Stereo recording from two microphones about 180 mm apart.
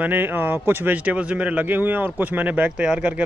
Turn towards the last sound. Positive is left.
turn(degrees=-5)  # may be behind; listen again after turning